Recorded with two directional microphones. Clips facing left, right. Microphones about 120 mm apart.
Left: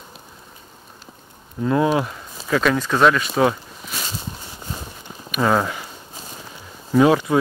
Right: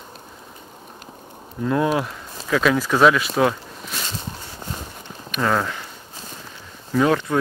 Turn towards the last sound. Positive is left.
turn(degrees=10)  # may be behind; listen again after turning